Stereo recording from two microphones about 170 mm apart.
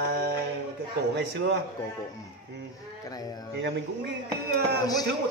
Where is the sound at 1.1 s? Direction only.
90° right.